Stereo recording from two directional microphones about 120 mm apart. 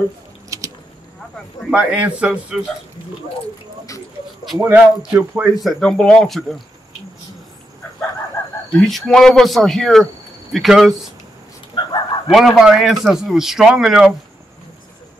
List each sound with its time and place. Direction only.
0.5 s a sound: 25° right (ahead or behind)
1.6 s speech: 5° right (ahead or behind)
4.6 s speech: 25° right (ahead or behind)
5.6 s a man's voice: 5° left (ahead or behind)
8.7 s a man's voice: 5° left (ahead or behind)
11.7 s chicken: 35° left (ahead or behind)
12.3 s a man's voice: centre (ahead or behind)